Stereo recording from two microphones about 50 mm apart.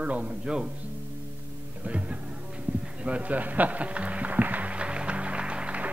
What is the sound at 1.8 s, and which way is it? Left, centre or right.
Music, right.